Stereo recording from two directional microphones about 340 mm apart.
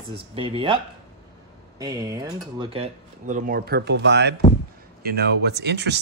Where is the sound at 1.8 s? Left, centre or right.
Centre.